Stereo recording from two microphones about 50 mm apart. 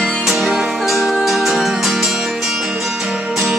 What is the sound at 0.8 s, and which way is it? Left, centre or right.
Music, centre.